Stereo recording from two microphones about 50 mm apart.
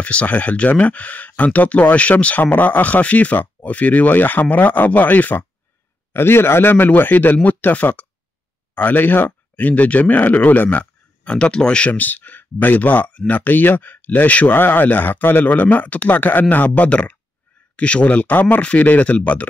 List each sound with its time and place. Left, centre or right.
0.0 s speech: left
2.4 s speech: left
6.1 s speech: left
11.2 s speech: left
11.9 s speech: left
14.5 s speech: left